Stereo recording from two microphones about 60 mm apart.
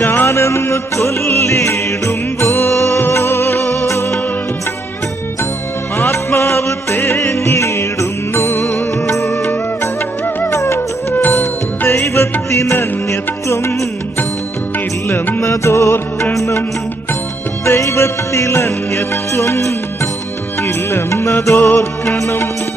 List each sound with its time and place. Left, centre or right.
0.0 s music: left
0.3 s music: left
5.9 s music: left
10.5 s music: left
15.0 s music: left
15.4 s music: left
17.6 s music: left
20.6 s music: left